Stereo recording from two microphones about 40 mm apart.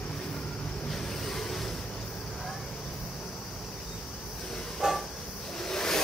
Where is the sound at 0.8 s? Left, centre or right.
Centre.